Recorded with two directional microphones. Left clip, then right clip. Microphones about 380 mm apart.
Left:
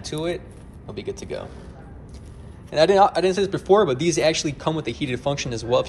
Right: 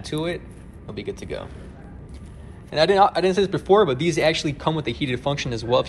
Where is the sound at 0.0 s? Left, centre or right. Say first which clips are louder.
Even; centre.